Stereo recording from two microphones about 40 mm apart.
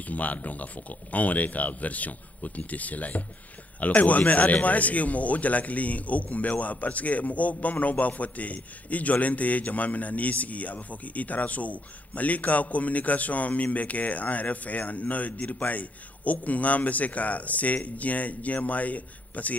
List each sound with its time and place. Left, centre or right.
0.0 s a man's voice: left